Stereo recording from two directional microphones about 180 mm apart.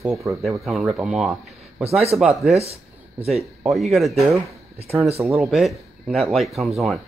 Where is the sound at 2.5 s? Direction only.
35° right (ahead or behind).